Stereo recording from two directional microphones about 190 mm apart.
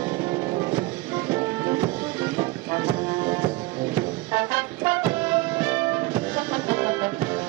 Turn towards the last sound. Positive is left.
turn(degrees=-15)  # may be behind; listen again after turning